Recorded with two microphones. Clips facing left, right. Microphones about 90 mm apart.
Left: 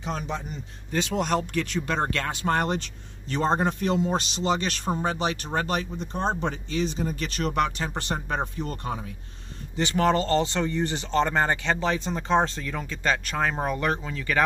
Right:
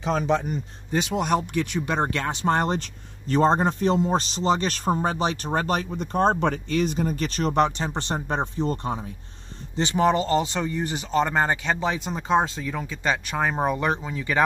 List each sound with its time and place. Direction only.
0.0 s a man's voice: 90° right
0.9 s speech: 15° right (ahead or behind); by 2.8 s 30° right (ahead or behind)
2.8 s speech: 40° right (ahead or behind)
5.9 s speech: 55° right (ahead or behind); by 14.4 s 20° right (ahead or behind)